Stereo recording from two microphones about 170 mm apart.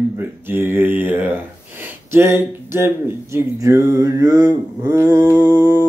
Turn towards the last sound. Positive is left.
turn(degrees=-20)  # may be behind; listen again after turning